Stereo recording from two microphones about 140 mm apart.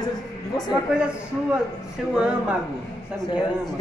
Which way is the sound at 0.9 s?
5° right (ahead or behind).